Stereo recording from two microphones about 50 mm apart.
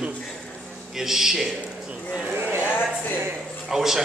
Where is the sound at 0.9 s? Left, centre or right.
Centre.